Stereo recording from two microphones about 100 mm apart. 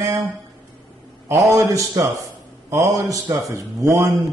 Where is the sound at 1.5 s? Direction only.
30° right (ahead or behind).